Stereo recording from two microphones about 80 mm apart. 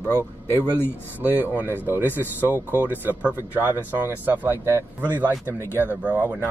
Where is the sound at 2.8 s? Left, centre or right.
Right.